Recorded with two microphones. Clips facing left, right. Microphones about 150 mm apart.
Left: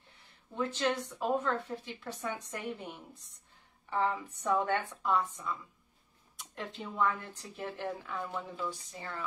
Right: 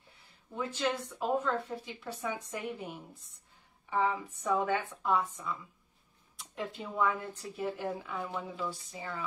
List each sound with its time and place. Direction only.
0.6 s a woman's voice: 10° right (ahead or behind)